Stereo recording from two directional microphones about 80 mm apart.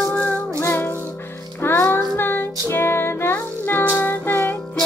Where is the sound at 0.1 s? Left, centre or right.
Centre.